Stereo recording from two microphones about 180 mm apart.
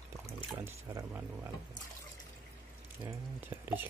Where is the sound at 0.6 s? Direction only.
10° right (ahead or behind).